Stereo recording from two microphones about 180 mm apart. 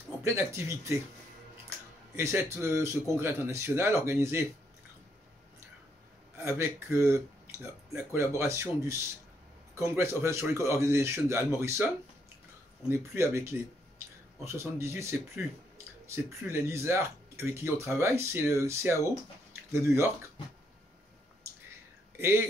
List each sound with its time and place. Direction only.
0.2 s speech: 15° right (ahead or behind)
2.1 s speech: 15° right (ahead or behind)
6.3 s speech: 15° right (ahead or behind)
12.9 s speech: 15° right (ahead or behind)
16.4 s speech: 15° right (ahead or behind)
22.1 s speech: 15° right (ahead or behind)